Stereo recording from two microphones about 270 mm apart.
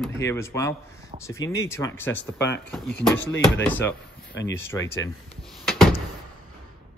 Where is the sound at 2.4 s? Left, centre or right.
Left.